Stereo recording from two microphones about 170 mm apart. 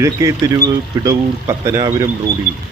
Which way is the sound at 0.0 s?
15° right (ahead or behind).